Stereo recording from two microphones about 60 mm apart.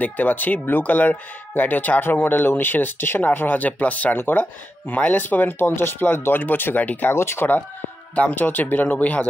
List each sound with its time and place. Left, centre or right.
0.0 s speech: left
7.2 s speech: left
8.2 s speech: left